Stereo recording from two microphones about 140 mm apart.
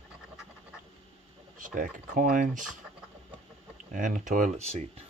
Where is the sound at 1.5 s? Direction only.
70° right (ahead or behind).